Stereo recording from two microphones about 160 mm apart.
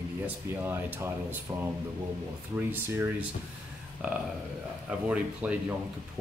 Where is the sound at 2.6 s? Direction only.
10° right (ahead or behind).